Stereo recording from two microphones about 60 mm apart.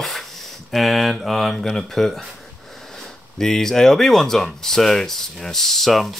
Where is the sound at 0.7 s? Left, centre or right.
Centre.